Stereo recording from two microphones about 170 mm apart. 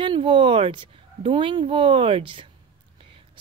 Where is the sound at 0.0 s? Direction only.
30° right (ahead or behind).